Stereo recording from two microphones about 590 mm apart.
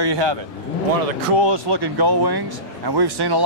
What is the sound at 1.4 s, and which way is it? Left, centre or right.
Speech, right.